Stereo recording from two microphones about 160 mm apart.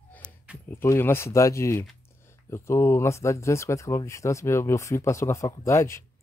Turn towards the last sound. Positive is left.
turn(degrees=15)  # may be behind; listen again after turning